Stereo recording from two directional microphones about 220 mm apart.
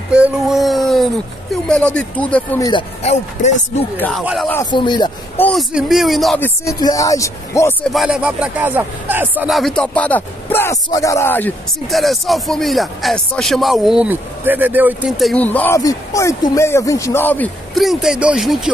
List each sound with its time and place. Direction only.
0.1 s speech: 5° right (ahead or behind)
2.7 s speech: 30° left (ahead or behind)
3.9 s speech: 10° left (ahead or behind)
4.2 s a man's voice: 5° right (ahead or behind)
4.5 s speech: 15° left (ahead or behind)
5.4 s speech: centre (ahead or behind)
7.9 s a man's voice: centre (ahead or behind)